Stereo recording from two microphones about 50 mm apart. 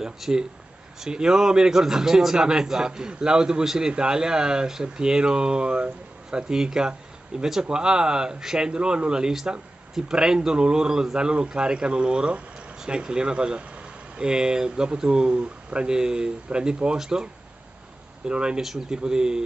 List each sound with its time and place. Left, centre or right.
0.0 s a man's voice: centre
18.3 s a man's voice: centre